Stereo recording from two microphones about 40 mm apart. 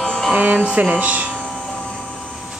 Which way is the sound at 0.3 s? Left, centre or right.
Right.